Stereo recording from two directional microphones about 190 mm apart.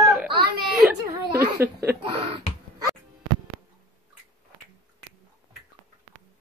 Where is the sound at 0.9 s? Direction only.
15° right (ahead or behind).